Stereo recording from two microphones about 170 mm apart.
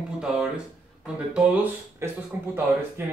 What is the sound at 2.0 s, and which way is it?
Speech, 15° right (ahead or behind).